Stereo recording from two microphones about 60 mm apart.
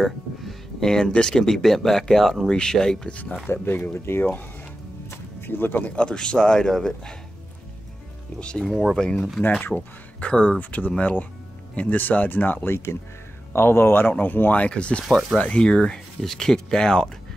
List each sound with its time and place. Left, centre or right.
0.0 s a sound: centre
1.1 s speech: centre
3.4 s speech: left
5.1 s a sound: left
5.9 s speech: centre
8.4 s speech: centre
9.5 s speech: left
10.3 s speech: centre
10.6 s speech: left
12.6 s speech: left
14.0 s speech: left
15.0 s speech: centre
15.3 s speech: centre